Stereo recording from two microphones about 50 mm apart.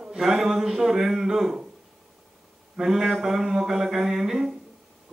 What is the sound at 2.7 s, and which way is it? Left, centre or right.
Mantra, centre.